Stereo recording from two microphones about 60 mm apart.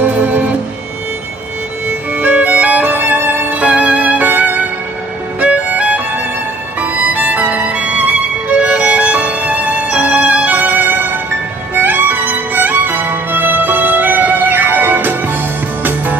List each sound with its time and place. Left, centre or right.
0.0 s music: right
2.1 s music: right
5.4 s violin: right
11.7 s music: right